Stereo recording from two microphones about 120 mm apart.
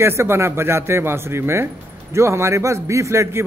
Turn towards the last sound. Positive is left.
turn(degrees=-25)  # may be behind; listen again after turning